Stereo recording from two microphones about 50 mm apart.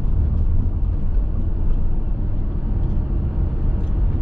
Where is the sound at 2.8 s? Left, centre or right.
Centre.